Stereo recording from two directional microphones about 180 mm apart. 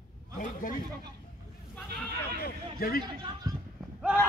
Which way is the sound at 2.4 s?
55° left (ahead or behind).